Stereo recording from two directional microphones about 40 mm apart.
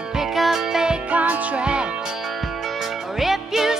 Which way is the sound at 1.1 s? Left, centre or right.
Right.